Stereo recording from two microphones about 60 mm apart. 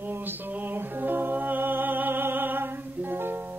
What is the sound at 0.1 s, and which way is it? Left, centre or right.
Music, right.